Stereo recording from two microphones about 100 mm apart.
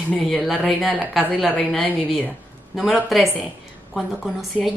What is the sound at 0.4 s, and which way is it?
A woman's voice, 5° left (ahead or behind).